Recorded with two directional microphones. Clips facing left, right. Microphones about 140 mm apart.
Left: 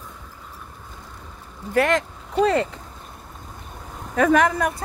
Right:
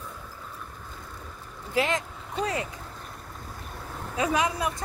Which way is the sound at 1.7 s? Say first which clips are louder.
Left 7 dB; 65° left (ahead or behind).